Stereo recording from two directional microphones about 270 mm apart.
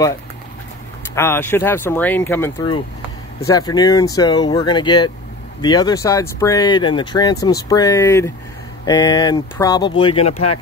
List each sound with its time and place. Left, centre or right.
1.1 s speech: centre